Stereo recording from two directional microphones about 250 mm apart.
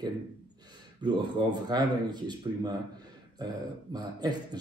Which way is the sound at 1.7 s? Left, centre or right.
Centre.